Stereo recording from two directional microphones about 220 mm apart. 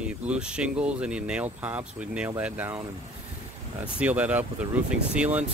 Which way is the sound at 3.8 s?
5° right (ahead or behind).